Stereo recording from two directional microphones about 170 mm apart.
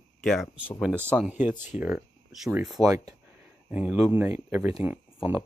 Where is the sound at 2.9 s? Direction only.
20° right (ahead or behind).